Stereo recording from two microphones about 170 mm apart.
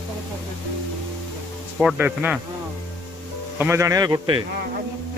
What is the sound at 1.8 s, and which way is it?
Speech, 5° right (ahead or behind).